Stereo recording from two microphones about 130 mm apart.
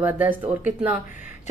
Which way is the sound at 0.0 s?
15° right (ahead or behind).